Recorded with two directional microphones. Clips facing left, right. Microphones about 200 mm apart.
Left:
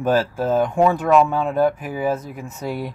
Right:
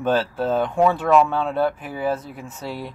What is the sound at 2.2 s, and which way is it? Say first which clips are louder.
Speech: left 3 dB; 45° left (ahead or behind).